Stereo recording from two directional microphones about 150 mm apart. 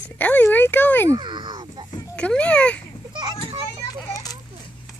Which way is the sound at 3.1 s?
30° right (ahead or behind).